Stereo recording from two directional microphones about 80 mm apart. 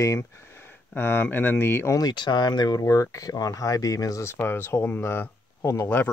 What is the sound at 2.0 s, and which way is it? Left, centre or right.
Speech, left.